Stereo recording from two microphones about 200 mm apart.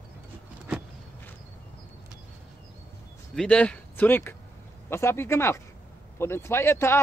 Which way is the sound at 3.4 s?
5° left (ahead or behind).